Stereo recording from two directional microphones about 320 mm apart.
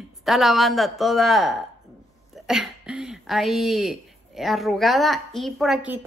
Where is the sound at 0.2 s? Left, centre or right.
Centre.